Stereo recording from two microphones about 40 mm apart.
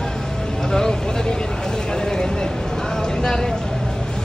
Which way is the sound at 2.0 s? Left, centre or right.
Centre.